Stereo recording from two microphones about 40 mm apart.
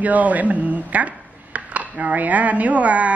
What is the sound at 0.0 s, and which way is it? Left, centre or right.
Speech, right.